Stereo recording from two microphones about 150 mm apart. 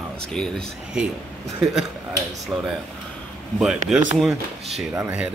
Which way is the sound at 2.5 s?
Centre (ahead or behind).